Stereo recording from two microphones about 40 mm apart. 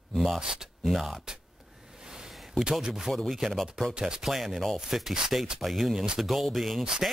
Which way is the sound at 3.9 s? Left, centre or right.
Right.